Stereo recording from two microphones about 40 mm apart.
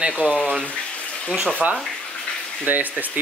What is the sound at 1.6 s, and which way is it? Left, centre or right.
Speech, right.